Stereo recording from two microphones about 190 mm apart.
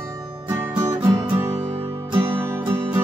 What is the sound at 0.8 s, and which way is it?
Music, 10° right (ahead or behind).